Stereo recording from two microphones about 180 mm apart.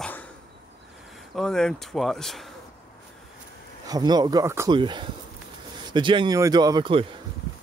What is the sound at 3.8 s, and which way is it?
A man's voice, 20° right (ahead or behind).